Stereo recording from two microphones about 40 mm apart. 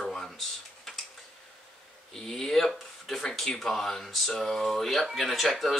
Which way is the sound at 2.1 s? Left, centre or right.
Centre.